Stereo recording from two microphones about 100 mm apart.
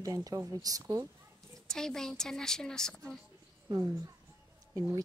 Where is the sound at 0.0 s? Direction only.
35° right (ahead or behind).